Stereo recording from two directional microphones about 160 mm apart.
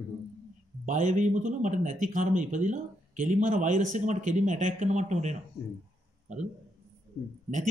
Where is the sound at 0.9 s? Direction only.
50° right (ahead or behind).